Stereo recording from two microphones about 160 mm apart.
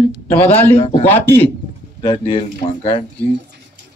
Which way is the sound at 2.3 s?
35° left (ahead or behind).